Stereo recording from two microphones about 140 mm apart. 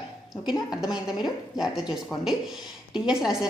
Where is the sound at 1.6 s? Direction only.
5° right (ahead or behind).